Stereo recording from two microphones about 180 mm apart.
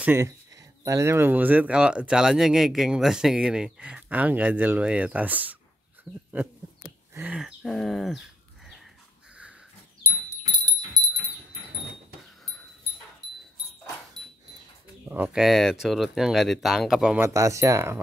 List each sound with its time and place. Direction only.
0.0 s speech: 10° right (ahead or behind)
7.2 s speech: 5° right (ahead or behind)
10.0 s a sound: 20° right (ahead or behind)
15.0 s speech: 10° right (ahead or behind)
17.2 s speech: 15° right (ahead or behind)